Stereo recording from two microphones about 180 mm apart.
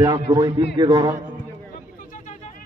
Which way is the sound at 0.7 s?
20° right (ahead or behind).